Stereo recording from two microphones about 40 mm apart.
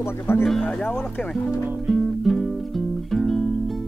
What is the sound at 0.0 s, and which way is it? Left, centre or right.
Speech, left.